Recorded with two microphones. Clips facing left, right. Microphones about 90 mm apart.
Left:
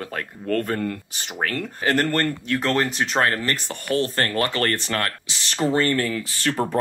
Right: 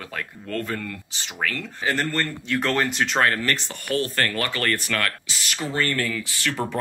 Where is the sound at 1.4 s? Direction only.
40° left (ahead or behind).